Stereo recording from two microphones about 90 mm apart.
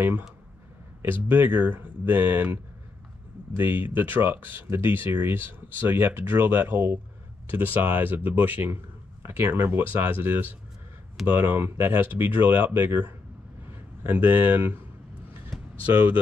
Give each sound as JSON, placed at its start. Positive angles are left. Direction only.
{"t": 1.3, "sound": "a man's voice", "side_deg": -20}
{"t": 15.8, "sound": "speech", "side_deg": -20}